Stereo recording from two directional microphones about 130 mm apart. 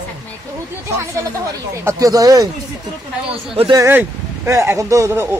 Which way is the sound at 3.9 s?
20° right (ahead or behind).